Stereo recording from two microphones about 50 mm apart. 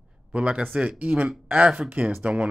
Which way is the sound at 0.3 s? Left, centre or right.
Right.